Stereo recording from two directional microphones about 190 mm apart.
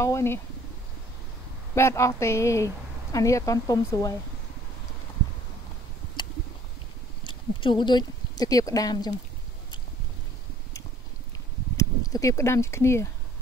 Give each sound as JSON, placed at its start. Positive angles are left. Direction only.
{"t": 0.0, "sound": "speech", "side_deg": 15}
{"t": 1.8, "sound": "speech", "side_deg": 15}
{"t": 7.2, "sound": "speech", "side_deg": 25}
{"t": 11.7, "sound": "speech", "side_deg": 15}